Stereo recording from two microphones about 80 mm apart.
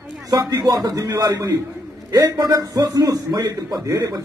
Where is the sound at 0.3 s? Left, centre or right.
Right.